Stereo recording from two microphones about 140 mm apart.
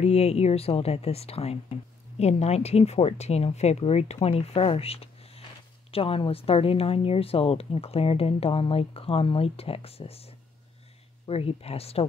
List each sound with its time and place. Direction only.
0.0 s speech: 50° left (ahead or behind)